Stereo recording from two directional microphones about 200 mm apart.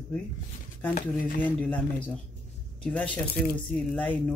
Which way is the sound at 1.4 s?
5° left (ahead or behind).